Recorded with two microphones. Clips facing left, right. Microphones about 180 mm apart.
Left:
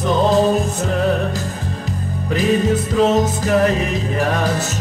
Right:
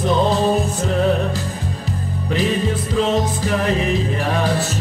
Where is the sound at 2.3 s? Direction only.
45° left (ahead or behind).